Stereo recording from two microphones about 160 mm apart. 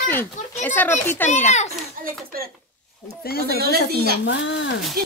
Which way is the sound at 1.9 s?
70° right (ahead or behind).